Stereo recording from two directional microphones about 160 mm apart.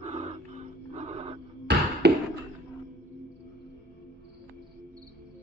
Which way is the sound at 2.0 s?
90° right.